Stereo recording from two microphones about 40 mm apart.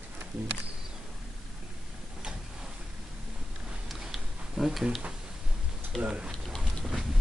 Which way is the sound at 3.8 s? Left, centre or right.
Centre.